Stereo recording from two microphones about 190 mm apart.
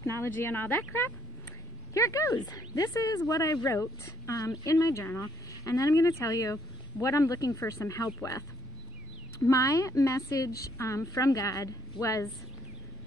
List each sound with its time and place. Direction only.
0.0 s a sound: 15° left (ahead or behind)
0.4 s speech: 10° left (ahead or behind)
9.5 s speech: 15° left (ahead or behind)